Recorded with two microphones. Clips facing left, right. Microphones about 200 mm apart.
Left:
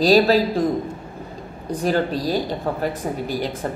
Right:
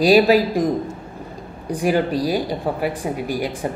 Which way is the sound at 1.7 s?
10° right (ahead or behind).